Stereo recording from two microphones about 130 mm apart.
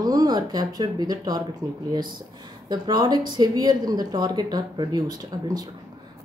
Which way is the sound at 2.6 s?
30° right (ahead or behind).